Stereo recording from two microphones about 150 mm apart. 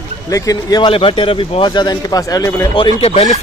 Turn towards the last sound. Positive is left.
turn(degrees=40)  # may be behind; listen again after turning